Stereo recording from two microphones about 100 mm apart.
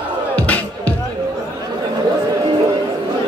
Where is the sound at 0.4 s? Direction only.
15° left (ahead or behind).